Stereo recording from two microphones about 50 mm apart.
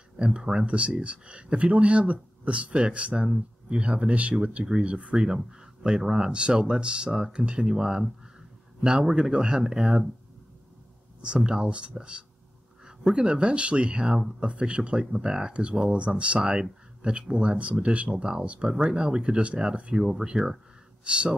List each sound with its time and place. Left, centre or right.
0.2 s speech: centre
11.4 s speech: centre
21.0 s speech: right